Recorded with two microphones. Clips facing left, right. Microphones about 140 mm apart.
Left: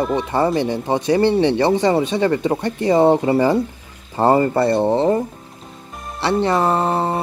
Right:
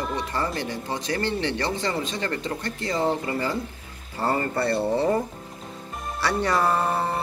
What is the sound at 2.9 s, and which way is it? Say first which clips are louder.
Speech: left 11 dB; 70° left (ahead or behind).